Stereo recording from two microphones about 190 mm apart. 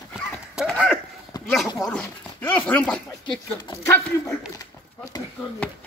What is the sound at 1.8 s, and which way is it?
Speech, 5° left (ahead or behind).